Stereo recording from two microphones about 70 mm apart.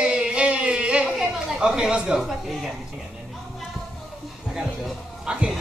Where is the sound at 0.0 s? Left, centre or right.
Centre.